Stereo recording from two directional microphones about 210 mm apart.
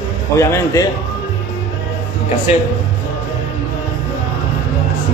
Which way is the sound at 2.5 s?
30° left (ahead or behind).